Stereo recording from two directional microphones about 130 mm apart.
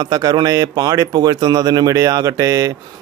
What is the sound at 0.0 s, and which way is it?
Speech, 30° right (ahead or behind).